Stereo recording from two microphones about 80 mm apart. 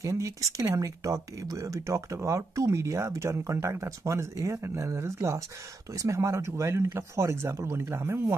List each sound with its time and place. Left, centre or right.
0.0 s speech: right